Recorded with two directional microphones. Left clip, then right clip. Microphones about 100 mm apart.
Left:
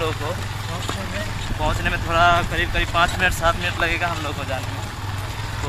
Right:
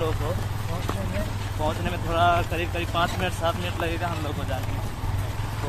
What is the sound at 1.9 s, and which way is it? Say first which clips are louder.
Speech: left 6 dB; 25° left (ahead or behind).